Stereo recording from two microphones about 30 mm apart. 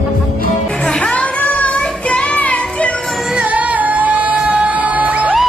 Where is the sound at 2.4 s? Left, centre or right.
Left.